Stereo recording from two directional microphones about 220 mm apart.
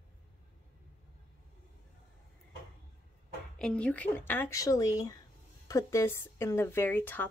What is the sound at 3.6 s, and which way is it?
Speech, 5° left (ahead or behind).